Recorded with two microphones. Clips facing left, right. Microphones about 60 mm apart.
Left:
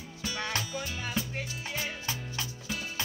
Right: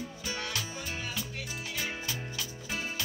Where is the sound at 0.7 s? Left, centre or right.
Right.